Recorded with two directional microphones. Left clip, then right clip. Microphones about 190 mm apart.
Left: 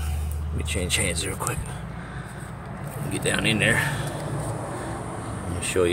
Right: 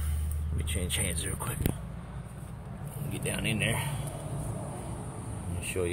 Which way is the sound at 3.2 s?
5° left (ahead or behind).